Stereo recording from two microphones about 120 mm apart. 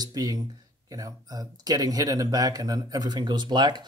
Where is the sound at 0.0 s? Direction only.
30° right (ahead or behind).